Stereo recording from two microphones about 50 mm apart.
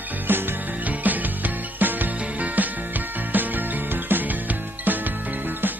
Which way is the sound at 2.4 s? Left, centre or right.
Right.